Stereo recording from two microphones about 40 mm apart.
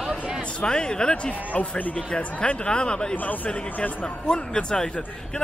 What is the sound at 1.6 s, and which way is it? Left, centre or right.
Speech, left.